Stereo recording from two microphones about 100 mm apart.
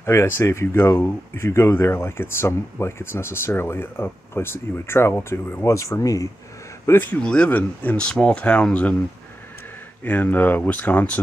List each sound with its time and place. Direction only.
0.0 s speech: 25° left (ahead or behind)
6.9 s speech: 20° left (ahead or behind)
10.0 s speech: 15° left (ahead or behind)